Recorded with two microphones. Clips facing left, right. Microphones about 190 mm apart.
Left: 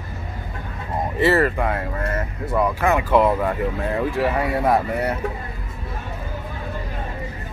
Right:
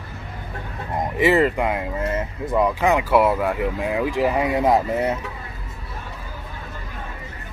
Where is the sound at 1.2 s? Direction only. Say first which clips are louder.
Right 1 dB; 15° right (ahead or behind).